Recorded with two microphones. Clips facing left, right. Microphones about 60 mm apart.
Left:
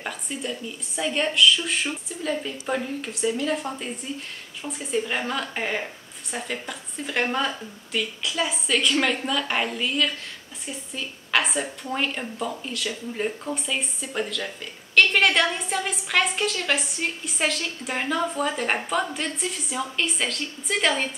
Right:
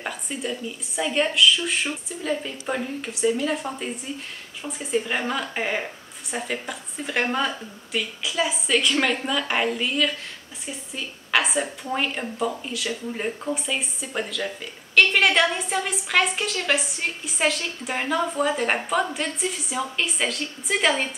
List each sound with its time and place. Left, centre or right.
0.0 s a woman's voice: centre